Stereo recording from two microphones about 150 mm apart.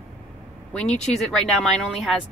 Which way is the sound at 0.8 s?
45° left (ahead or behind).